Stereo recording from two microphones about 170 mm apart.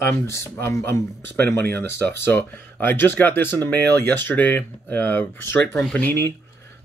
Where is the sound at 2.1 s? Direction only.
15° left (ahead or behind).